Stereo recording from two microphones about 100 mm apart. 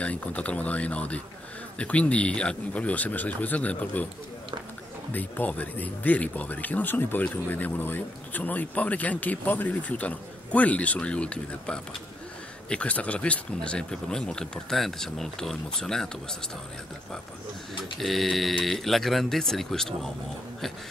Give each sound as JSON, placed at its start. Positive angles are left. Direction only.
{"t": 0.0, "sound": "speech", "side_deg": 15}
{"t": 5.1, "sound": "speech", "side_deg": 15}
{"t": 17.9, "sound": "speech", "side_deg": 0}